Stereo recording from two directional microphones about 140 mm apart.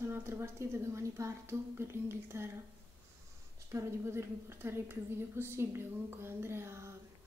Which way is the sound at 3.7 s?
20° right (ahead or behind).